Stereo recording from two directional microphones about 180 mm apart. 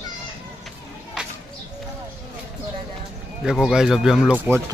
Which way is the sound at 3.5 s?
5° right (ahead or behind).